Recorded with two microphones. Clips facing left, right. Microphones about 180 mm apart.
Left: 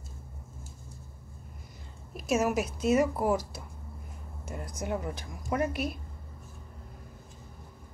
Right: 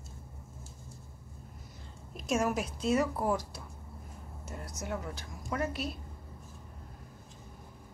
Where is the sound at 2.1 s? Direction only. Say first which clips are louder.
Left 3 dB; 5° left (ahead or behind).